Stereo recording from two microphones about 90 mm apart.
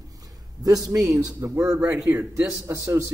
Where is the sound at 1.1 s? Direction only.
30° right (ahead or behind).